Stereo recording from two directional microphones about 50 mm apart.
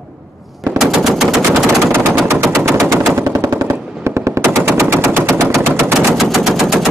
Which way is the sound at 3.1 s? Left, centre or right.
Right.